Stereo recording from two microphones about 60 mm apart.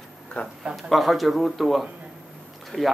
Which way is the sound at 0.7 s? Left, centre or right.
Centre.